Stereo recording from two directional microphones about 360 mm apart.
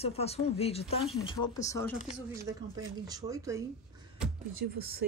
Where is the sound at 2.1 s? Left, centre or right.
Centre.